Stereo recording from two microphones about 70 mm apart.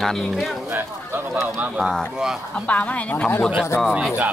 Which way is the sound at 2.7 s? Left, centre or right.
Left.